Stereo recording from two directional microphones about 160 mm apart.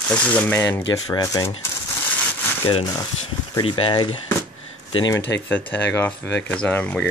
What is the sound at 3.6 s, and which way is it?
Speech, 35° left (ahead or behind).